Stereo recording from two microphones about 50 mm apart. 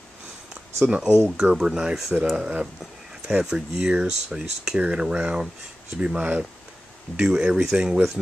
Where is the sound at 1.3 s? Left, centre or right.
Centre.